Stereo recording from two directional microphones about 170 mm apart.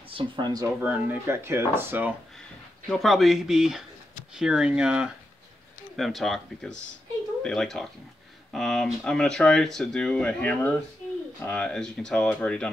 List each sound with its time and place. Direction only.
0.1 s speech: 25° right (ahead or behind)
0.8 s speech: 10° right (ahead or behind)
2.9 s speech: centre (ahead or behind)